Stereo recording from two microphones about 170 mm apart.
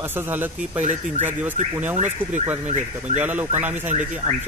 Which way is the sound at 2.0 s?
45° right (ahead or behind).